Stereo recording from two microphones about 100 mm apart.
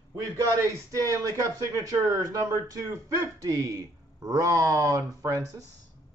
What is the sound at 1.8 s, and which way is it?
Speech, 30° right (ahead or behind).